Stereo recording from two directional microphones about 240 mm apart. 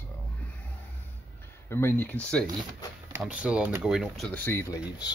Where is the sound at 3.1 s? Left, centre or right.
Centre.